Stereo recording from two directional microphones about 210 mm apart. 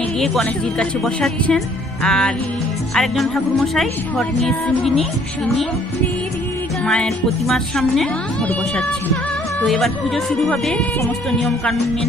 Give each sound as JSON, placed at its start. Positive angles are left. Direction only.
{"t": 0.2, "sound": "a woman's voice", "side_deg": 0}
{"t": 6.9, "sound": "a woman's voice", "side_deg": 5}